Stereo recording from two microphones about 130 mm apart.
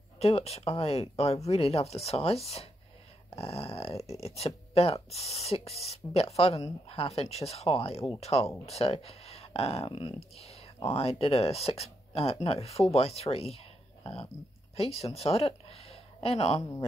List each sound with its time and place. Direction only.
0.2 s speech: 50° left (ahead or behind)